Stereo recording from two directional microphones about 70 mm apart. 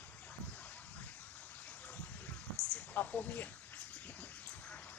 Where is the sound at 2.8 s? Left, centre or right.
Left.